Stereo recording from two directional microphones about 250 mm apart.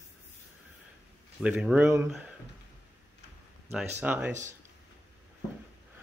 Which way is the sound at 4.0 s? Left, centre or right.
Centre.